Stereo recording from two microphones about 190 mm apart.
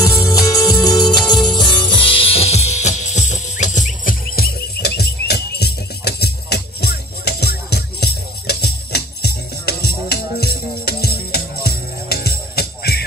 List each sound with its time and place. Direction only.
0.0 s music: 20° left (ahead or behind); by 13.0 s 55° left (ahead or behind)